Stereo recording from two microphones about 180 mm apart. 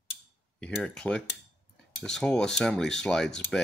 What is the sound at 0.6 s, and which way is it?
Speech, 5° left (ahead or behind).